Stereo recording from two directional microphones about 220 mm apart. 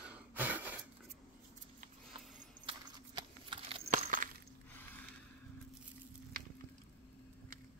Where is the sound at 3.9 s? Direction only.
35° right (ahead or behind).